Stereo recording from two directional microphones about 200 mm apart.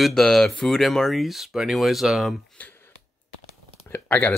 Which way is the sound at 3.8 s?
10° left (ahead or behind).